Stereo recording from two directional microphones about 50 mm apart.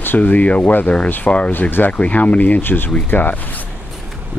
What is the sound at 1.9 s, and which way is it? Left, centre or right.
Speech, left.